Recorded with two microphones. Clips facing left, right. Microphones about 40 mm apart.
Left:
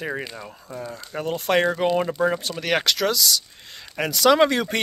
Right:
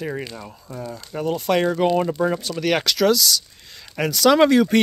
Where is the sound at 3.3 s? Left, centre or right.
Left.